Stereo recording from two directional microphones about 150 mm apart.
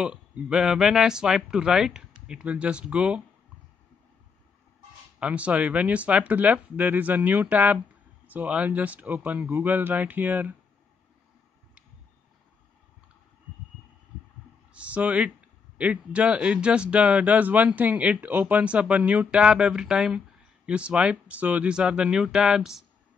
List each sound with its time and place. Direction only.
0.0 s speech: 5° right (ahead or behind)
5.2 s speech: 10° right (ahead or behind)
14.7 s speech: 10° right (ahead or behind)